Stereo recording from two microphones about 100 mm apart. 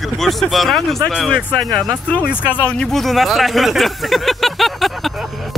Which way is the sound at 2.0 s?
15° left (ahead or behind).